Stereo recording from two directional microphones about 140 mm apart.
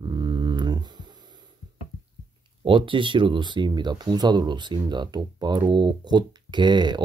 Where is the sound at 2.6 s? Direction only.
35° right (ahead or behind).